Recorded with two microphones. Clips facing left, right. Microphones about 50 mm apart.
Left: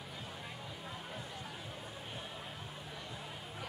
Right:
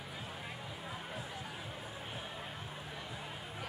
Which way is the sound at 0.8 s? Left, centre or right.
Centre.